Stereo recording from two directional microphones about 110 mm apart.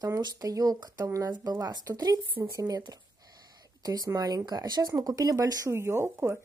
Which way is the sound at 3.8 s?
35° right (ahead or behind).